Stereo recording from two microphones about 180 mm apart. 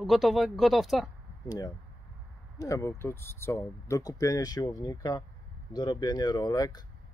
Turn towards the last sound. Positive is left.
turn(degrees=20)  # may be behind; listen again after turning